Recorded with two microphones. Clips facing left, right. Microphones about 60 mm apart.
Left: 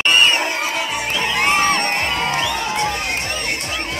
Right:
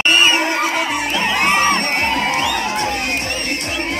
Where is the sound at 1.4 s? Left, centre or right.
Right.